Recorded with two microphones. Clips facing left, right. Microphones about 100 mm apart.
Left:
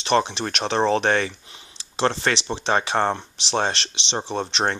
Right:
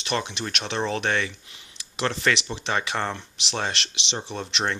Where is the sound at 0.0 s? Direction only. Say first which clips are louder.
Left 7 dB; 35° left (ahead or behind).